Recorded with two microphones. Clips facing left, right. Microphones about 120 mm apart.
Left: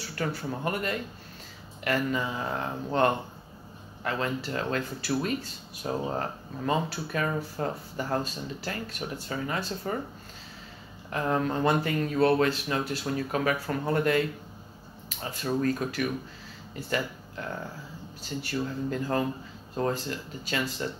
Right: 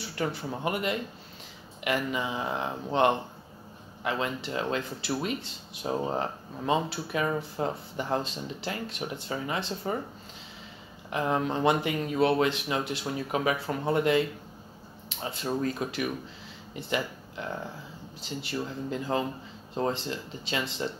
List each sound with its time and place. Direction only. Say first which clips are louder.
0.1 s speech: even; 20° right (ahead or behind)
11.1 s speech: even; 15° right (ahead or behind)
15.2 s speech: left 2 dB; 20° right (ahead or behind)